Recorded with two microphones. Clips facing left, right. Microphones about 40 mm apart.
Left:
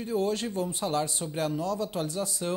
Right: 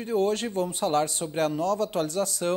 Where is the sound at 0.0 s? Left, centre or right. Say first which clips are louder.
Right 3 dB; right.